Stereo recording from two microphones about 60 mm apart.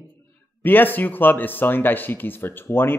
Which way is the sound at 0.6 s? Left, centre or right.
Left.